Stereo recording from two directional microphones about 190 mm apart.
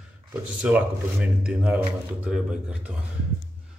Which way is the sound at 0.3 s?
10° right (ahead or behind).